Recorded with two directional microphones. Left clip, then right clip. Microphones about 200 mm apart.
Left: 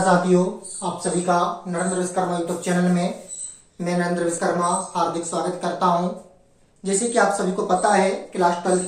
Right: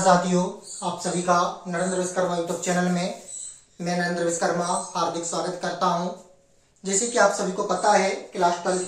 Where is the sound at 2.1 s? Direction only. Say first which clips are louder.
Left 1 dB; 15° right (ahead or behind).